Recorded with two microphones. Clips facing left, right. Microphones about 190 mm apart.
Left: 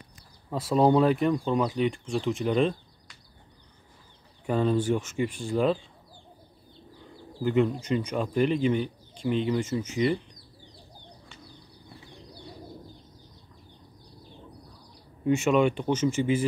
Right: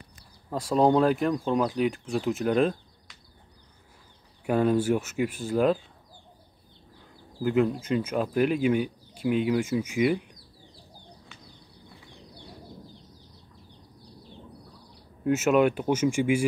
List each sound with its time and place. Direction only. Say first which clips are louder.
0.5 s speech: even; centre (ahead or behind)
4.5 s speech: right 2 dB; 10° right (ahead or behind)
7.4 s speech: even; centre (ahead or behind)
15.2 s speech: right 1 dB; 5° right (ahead or behind)